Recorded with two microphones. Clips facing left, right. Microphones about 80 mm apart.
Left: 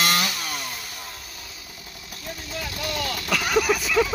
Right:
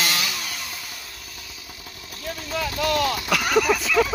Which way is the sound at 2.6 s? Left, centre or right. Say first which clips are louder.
Right 8 dB; right.